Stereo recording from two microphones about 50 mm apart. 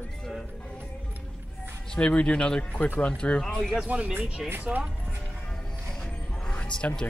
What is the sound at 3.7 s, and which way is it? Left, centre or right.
Speech, right.